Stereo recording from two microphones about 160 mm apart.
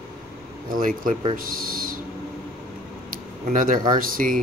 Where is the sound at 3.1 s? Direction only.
60° right (ahead or behind).